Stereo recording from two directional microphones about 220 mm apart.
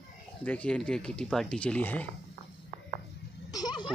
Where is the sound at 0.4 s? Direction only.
5° left (ahead or behind).